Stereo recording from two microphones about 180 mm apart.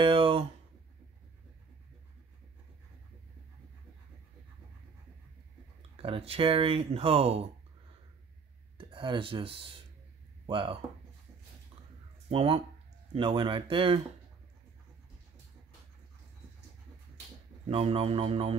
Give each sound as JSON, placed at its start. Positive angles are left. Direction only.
{"t": 0.0, "sound": "a sound", "side_deg": -30}
{"t": 5.8, "sound": "speech", "side_deg": -30}
{"t": 8.7, "sound": "speech", "side_deg": -30}
{"t": 12.3, "sound": "speech", "side_deg": -30}
{"t": 17.6, "sound": "speech", "side_deg": -35}